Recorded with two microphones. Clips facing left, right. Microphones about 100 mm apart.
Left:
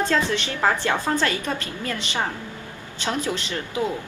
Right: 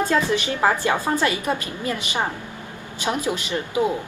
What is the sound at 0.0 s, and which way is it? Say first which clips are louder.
A woman's voice: right 2 dB; 15° right (ahead or behind).